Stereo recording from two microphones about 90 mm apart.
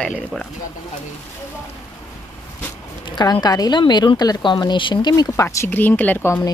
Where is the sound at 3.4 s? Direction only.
45° left (ahead or behind).